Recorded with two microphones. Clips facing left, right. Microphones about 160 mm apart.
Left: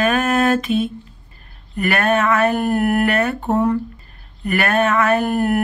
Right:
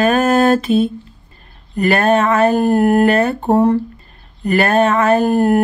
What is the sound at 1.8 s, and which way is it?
Speech, 30° right (ahead or behind).